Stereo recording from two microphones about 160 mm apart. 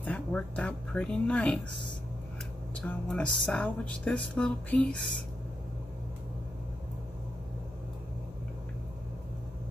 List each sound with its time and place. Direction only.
0.0 s speech: 10° left (ahead or behind)